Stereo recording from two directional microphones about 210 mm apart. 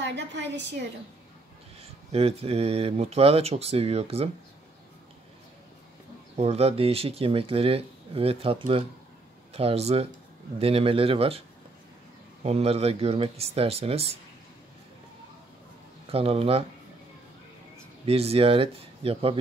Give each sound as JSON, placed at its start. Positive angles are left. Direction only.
{"t": 0.1, "sound": "a woman's voice", "side_deg": -55}
{"t": 1.8, "sound": "speech", "side_deg": -30}
{"t": 6.3, "sound": "speech", "side_deg": -30}
{"t": 12.4, "sound": "speech", "side_deg": -30}
{"t": 16.1, "sound": "speech", "side_deg": -30}
{"t": 18.0, "sound": "speech", "side_deg": -30}